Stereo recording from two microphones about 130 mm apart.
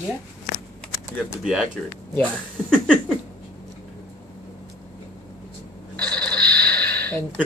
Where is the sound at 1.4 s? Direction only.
5° right (ahead or behind).